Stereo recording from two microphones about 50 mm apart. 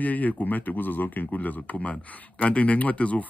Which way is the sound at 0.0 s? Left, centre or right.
Left.